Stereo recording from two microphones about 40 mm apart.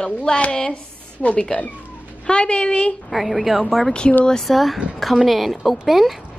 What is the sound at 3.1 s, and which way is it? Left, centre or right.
Speech, centre.